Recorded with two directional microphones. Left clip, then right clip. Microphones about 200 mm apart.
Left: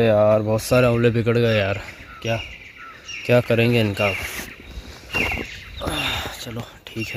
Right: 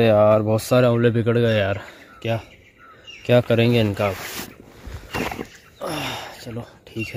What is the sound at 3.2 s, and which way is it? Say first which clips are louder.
Speech: even; 10° right (ahead or behind).